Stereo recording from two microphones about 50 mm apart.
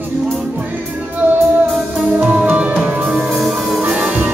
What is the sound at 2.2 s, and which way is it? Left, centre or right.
Music, right.